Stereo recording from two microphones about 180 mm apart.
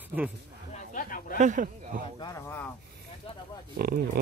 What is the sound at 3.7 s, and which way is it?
Speech, 55° right (ahead or behind).